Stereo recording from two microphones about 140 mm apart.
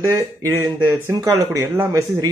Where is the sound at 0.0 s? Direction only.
20° right (ahead or behind).